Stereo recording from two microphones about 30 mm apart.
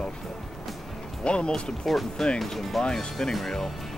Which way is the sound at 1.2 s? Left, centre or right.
Left.